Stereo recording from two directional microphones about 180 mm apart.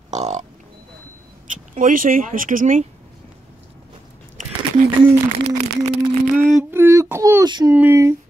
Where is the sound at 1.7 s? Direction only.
50° right (ahead or behind).